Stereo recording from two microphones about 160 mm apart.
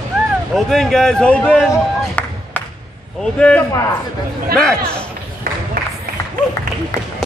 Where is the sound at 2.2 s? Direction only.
10° left (ahead or behind).